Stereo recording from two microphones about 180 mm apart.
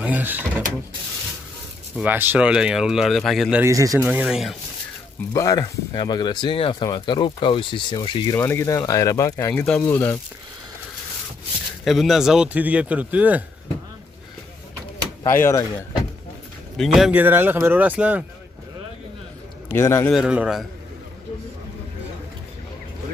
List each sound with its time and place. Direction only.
0.0 s speech: 10° right (ahead or behind)
2.0 s speech: 10° right (ahead or behind)
3.7 s speech: 20° right (ahead or behind)
4.1 s speech: 5° right (ahead or behind)
5.3 s speech: 20° left (ahead or behind)
8.4 s speech: 15° left (ahead or behind)
11.8 s speech: centre (ahead or behind)
15.2 s speech: 15° left (ahead or behind)
16.7 s speech: centre (ahead or behind)
19.7 s speech: 15° left (ahead or behind)
20.1 s speech: 5° right (ahead or behind)